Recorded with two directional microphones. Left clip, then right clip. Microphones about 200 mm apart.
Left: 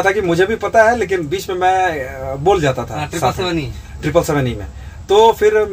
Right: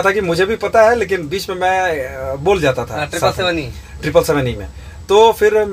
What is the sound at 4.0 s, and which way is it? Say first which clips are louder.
Speech: right 2 dB; 15° right (ahead or behind).